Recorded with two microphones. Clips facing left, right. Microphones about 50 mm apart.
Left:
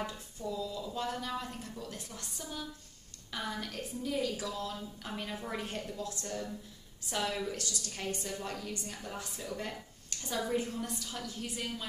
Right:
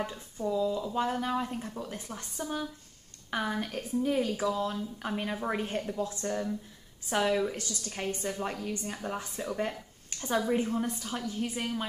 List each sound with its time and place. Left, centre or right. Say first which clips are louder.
0.4 s a woman's voice: right 9 dB; right
10.0 s a sound: right 7 dB; right
10.5 s speech: right 5 dB; right